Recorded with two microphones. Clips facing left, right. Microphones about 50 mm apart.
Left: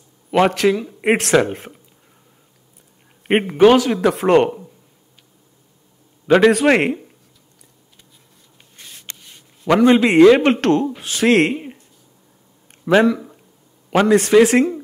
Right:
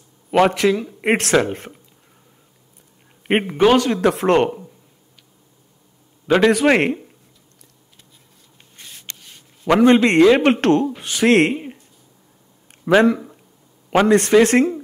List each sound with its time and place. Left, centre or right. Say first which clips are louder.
0.7 s speech: left 1 dB; centre
3.3 s speech: left 3 dB; centre
6.2 s a man's voice: left 2 dB; centre
9.2 s a sound: right 1 dB; centre
9.8 s speech: left 2 dB; centre
12.9 s speech: even; right
13.8 s a sound: even; centre
14.1 s speech: left 2 dB; centre